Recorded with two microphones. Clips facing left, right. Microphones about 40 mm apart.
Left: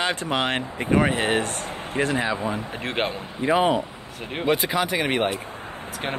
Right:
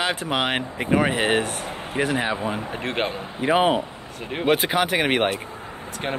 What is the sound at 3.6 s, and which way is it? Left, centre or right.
Speech, right.